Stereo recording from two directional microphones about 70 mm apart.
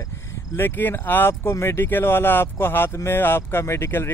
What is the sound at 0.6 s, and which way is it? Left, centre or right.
Speech, left.